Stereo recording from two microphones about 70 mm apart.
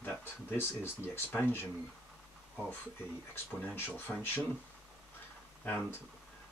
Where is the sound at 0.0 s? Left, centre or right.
Left.